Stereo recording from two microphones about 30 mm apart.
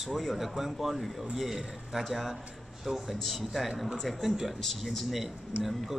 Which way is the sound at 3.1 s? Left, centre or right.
Centre.